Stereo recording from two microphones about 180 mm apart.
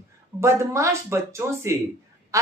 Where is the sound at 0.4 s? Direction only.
15° right (ahead or behind).